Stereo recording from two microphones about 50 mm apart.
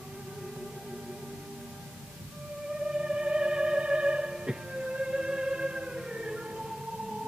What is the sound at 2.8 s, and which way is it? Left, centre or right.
Theremin, centre.